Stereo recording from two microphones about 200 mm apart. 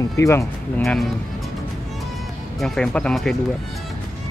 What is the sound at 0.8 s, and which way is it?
Speech, centre (ahead or behind).